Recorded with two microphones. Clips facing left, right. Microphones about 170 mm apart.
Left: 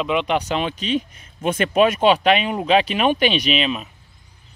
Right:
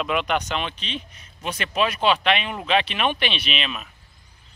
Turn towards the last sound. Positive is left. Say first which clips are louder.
# left 8 dB
turn(degrees=35)  # may be behind; listen again after turning